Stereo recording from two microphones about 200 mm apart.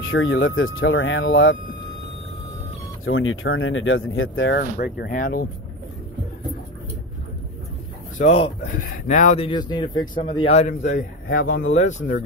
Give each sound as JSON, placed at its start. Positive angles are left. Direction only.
{"t": 0.0, "sound": "speech", "side_deg": 75}
{"t": 3.1, "sound": "speech", "side_deg": 80}
{"t": 4.6, "sound": "speech", "side_deg": 50}
{"t": 8.2, "sound": "a man's voice", "side_deg": 35}
{"t": 9.5, "sound": "a man's voice", "side_deg": 20}